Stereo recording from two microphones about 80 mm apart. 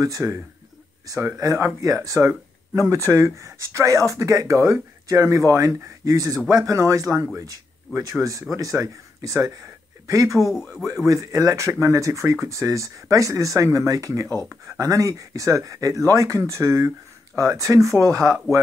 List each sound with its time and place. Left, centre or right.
0.2 s speech: right
1.0 s speech: right
6.3 s speech: centre
6.6 s speech: right
10.4 s a man's voice: centre
11.1 s speech: right